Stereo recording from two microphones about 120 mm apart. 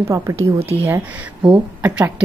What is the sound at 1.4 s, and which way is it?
Speech, 10° right (ahead or behind).